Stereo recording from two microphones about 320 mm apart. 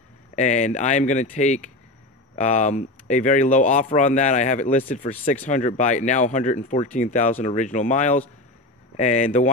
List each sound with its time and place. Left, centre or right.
0.4 s speech: left